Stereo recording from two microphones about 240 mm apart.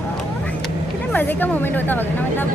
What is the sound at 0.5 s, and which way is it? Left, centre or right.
A woman's voice, centre.